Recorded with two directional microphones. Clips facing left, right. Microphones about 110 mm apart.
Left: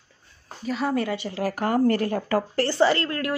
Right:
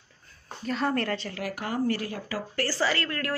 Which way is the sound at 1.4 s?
45° left (ahead or behind).